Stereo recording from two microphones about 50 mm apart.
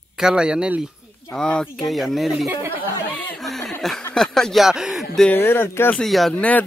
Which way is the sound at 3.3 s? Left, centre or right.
Centre.